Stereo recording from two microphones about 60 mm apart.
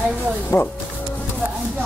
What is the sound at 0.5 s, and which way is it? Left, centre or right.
Speech, left.